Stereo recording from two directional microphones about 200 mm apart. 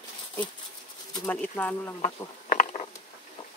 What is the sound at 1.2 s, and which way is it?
Speech, 10° left (ahead or behind).